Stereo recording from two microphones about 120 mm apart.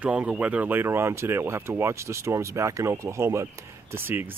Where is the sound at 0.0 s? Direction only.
10° right (ahead or behind).